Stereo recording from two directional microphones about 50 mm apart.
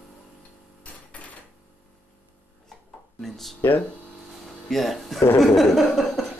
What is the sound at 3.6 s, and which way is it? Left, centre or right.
Speech, left.